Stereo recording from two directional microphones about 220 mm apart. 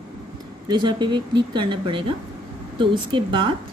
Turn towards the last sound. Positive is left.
turn(degrees=-20)  # may be behind; listen again after turning